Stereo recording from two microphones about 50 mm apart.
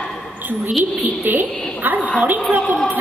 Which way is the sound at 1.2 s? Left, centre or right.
Right.